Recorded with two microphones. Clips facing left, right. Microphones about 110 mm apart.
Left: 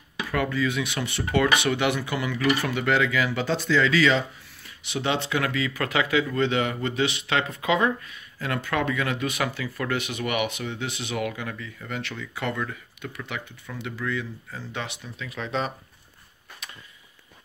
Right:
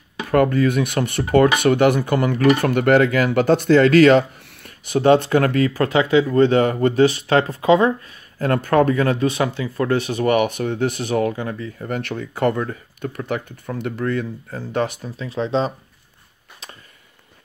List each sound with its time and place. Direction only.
0.3 s speech: 50° right (ahead or behind)
4.8 s speech: 45° right (ahead or behind)
5.7 s speech: 30° right (ahead or behind)